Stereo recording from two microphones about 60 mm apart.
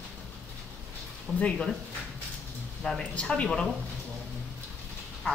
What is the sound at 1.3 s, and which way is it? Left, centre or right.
Speech, centre.